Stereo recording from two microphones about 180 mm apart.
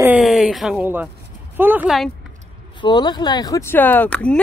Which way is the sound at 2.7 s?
25° left (ahead or behind).